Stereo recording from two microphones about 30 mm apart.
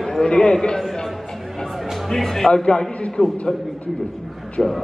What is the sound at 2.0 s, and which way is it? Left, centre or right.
Speech, centre.